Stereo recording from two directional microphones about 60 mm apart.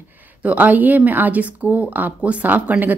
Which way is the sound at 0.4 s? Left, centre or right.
Right.